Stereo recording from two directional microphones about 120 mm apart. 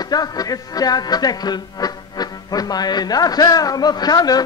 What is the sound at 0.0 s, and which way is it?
Speech, 35° left (ahead or behind).